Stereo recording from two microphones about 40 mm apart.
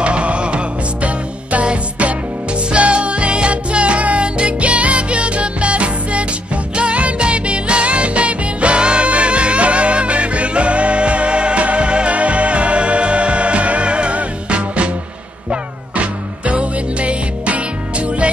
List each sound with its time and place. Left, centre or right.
0.0 s music: right